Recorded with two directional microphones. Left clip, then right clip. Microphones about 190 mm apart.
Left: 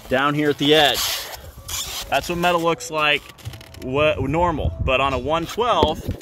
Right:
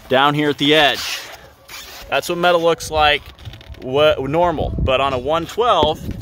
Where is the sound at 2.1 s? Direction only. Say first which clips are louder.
Right 4 dB; 30° right (ahead or behind).